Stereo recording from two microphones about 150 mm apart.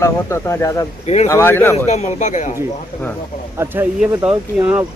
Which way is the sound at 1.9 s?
55° left (ahead or behind).